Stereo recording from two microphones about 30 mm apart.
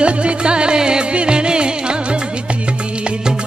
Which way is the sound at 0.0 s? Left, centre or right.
Right.